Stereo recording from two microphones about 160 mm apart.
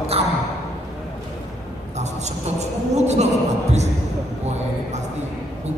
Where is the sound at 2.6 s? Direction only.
45° right (ahead or behind).